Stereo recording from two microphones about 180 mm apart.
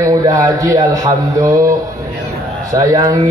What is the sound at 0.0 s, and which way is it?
A man's voice, 20° right (ahead or behind).